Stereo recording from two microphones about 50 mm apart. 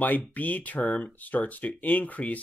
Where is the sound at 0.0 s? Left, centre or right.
Left.